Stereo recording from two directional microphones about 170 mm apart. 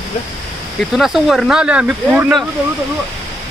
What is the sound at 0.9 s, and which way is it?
Speech, centre (ahead or behind).